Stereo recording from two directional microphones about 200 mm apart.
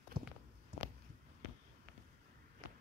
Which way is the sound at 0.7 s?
35° right (ahead or behind).